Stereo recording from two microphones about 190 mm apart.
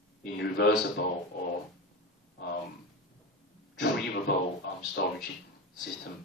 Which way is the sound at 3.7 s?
60° left (ahead or behind).